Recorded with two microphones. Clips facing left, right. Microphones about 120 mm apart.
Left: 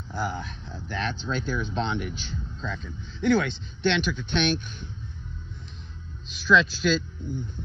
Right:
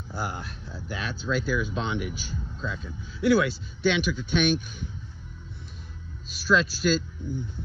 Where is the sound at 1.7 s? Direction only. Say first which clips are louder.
Left 1 dB; 50° left (ahead or behind).